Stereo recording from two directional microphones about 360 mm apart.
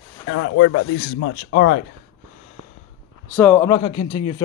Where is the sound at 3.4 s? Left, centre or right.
Centre.